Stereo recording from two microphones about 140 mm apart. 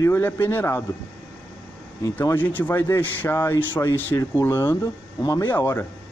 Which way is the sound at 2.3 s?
15° left (ahead or behind).